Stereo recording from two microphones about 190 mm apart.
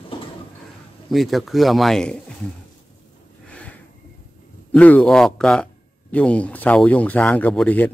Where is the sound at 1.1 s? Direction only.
Centre (ahead or behind).